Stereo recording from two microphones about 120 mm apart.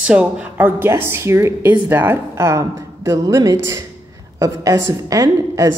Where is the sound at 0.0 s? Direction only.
10° right (ahead or behind).